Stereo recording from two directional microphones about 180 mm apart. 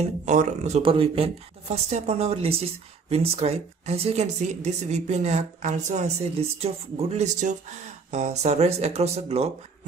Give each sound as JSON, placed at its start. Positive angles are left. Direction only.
{"t": 0.2, "sound": "a woman's voice", "side_deg": -40}